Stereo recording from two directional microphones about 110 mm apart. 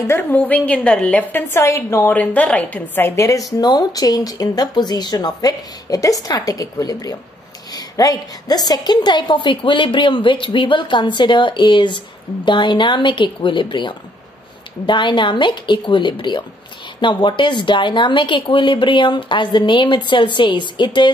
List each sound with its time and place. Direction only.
0.0 s a woman's voice: 20° left (ahead or behind)
1.5 s a woman's voice: 25° left (ahead or behind)
2.1 s a woman's voice: 10° left (ahead or behind); by 21.1 s 45° left (ahead or behind)